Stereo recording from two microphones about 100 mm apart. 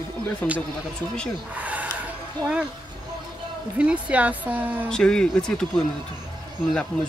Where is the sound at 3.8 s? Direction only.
10° right (ahead or behind).